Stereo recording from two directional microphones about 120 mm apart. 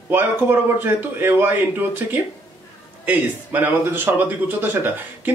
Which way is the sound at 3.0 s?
15° right (ahead or behind).